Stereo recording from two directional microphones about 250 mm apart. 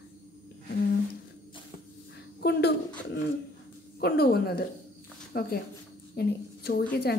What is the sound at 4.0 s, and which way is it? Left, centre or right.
A woman's voice, left.